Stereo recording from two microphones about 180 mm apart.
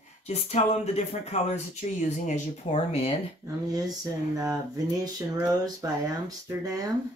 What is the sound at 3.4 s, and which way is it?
Speech, 20° right (ahead or behind).